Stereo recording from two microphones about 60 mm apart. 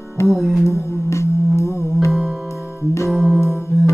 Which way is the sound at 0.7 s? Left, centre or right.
Left.